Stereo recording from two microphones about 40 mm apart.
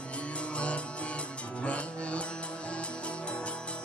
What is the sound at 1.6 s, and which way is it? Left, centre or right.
Music, left.